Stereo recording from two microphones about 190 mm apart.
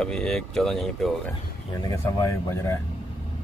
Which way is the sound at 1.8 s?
15° left (ahead or behind).